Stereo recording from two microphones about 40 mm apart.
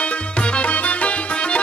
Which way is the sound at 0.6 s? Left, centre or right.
Left.